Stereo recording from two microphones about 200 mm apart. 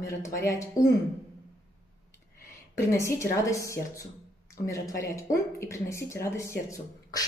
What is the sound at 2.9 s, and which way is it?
A woman's voice, 15° left (ahead or behind).